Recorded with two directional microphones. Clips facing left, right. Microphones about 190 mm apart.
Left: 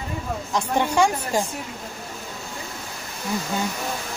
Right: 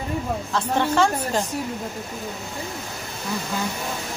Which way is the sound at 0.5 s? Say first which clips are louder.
Even; 15° left (ahead or behind).